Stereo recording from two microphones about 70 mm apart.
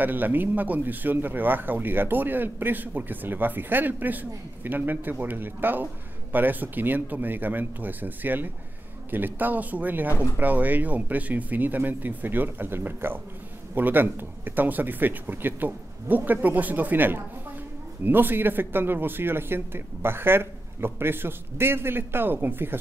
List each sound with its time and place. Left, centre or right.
0.0 s speech: right